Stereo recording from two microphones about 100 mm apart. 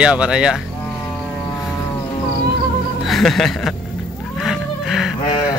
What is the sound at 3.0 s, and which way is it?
Speech, centre (ahead or behind).